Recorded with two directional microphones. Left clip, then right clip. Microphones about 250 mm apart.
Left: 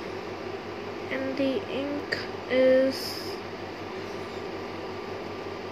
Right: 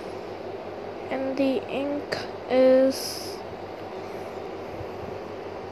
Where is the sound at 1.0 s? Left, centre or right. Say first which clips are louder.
Right 3 dB; centre.